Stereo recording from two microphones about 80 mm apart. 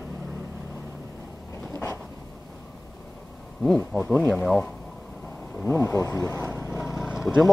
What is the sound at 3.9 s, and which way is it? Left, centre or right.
Speech, centre.